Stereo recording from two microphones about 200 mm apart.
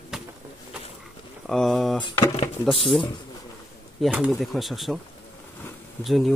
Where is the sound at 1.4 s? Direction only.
Centre (ahead or behind).